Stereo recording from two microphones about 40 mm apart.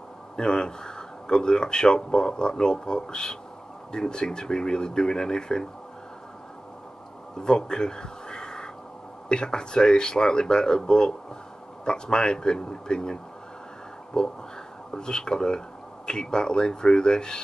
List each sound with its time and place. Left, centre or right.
0.4 s speech: left
7.3 s speech: centre